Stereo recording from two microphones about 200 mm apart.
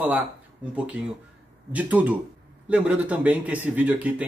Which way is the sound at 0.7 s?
5° right (ahead or behind).